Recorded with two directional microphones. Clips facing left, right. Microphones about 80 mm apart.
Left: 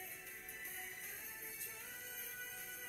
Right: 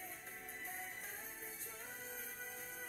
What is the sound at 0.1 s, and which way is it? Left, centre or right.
Music, right.